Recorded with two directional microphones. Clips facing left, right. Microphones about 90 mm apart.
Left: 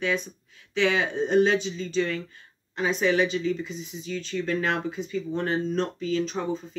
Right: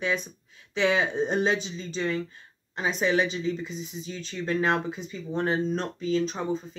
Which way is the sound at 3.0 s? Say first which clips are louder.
Left 1 dB; 25° right (ahead or behind).